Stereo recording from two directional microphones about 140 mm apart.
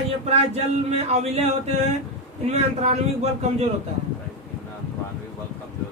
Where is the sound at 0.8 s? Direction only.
50° right (ahead or behind).